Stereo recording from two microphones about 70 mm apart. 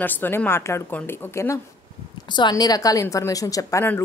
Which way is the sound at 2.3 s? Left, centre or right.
Left.